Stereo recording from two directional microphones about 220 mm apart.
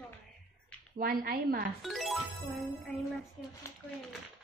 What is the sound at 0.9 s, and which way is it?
Speech, 40° right (ahead or behind).